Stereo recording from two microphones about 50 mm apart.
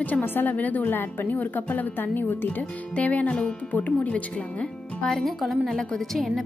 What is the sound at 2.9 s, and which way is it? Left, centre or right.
A woman's voice, left.